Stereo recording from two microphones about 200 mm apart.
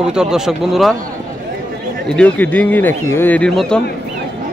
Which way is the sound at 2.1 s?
5° left (ahead or behind).